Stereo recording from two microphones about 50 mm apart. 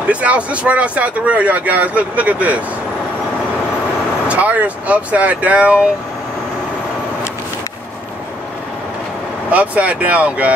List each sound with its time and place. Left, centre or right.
0.1 s speech: right
4.3 s speech: right
9.5 s speech: right